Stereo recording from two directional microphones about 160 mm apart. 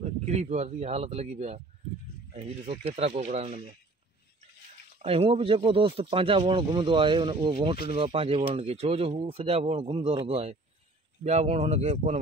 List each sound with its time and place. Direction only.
0.0 s speech: 45° right (ahead or behind)
5.0 s speech: 40° right (ahead or behind)